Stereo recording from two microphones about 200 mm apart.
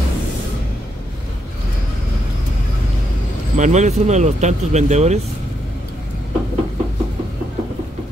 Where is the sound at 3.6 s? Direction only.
35° right (ahead or behind).